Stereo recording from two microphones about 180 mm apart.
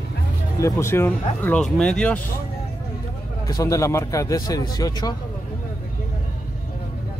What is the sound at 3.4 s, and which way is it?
A man's voice, 20° left (ahead or behind).